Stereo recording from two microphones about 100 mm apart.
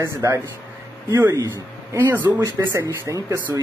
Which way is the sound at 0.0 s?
30° right (ahead or behind).